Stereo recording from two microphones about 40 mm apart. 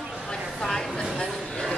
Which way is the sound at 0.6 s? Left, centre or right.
Centre.